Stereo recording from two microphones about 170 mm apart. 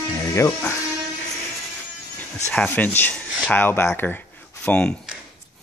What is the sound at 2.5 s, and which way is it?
Speech, 10° left (ahead or behind).